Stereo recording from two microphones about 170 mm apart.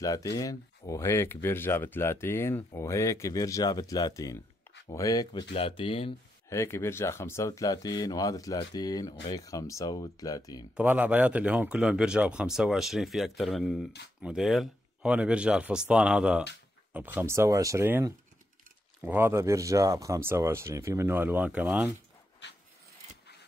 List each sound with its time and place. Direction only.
0.0 s speech: 20° left (ahead or behind)
5.5 s speech: 35° left (ahead or behind)
6.5 s speech: 15° left (ahead or behind)
10.8 s speech: 10° right (ahead or behind)
22.4 s dog: 90° left